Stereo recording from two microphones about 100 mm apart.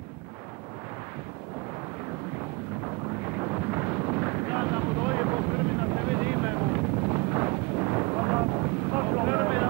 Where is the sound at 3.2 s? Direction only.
20° right (ahead or behind).